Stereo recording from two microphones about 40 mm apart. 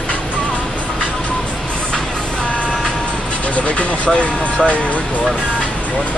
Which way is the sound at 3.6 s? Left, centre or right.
Left.